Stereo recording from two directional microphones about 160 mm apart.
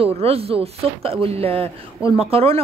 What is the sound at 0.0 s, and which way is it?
A woman's voice, 40° right (ahead or behind).